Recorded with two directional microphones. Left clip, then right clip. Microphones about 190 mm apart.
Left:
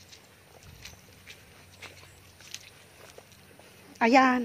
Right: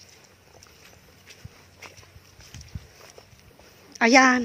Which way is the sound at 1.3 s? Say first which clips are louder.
Right 1 dB; 25° right (ahead or behind).